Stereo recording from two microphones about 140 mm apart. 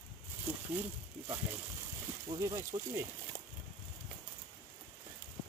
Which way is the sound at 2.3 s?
25° right (ahead or behind).